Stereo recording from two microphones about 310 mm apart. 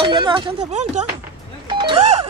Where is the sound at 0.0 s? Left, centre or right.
Centre.